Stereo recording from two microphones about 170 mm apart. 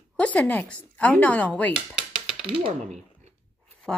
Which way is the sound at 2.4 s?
35° right (ahead or behind).